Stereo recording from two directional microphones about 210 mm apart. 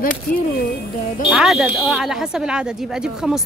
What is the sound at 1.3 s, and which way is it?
Speech, centre (ahead or behind).